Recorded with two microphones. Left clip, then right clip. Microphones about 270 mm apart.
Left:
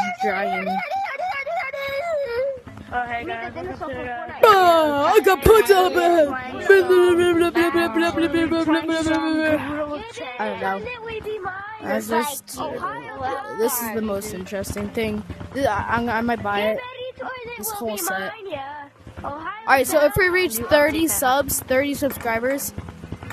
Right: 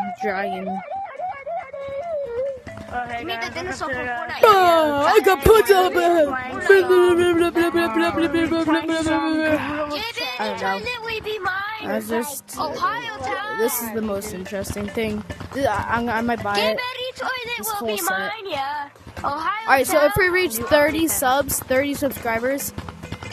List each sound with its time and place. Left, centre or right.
0.2 s a woman's voice: centre
0.6 s speech: left
2.9 s speech: centre
3.9 s speech: right
4.4 s a woman's voice: centre
9.6 s speech: centre
10.9 s music: right
12.6 s speech: right
13.6 s a woman's voice: centre
16.6 s a woman's voice: right
19.2 s speech: right
19.6 s a woman's voice: centre